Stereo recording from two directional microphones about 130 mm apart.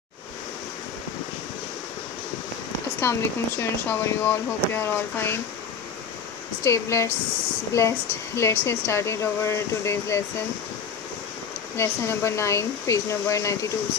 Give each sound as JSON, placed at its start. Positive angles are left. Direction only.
{"t": 3.0, "sound": "speech", "side_deg": 20}
{"t": 6.6, "sound": "speech", "side_deg": 20}
{"t": 11.7, "sound": "speech", "side_deg": 20}